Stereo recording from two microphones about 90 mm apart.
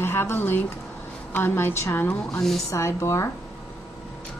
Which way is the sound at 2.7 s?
35° left (ahead or behind).